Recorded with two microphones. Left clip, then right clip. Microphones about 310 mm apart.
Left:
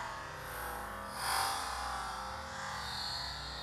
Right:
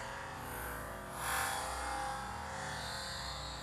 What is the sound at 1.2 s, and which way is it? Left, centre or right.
Music, left.